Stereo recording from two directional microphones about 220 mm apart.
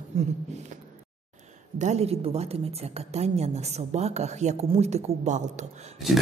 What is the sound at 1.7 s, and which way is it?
A woman's voice, 30° right (ahead or behind).